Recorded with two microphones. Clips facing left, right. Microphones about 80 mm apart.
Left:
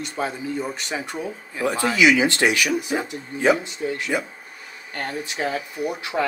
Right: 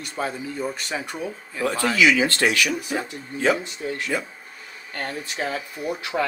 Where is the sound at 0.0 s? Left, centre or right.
Left.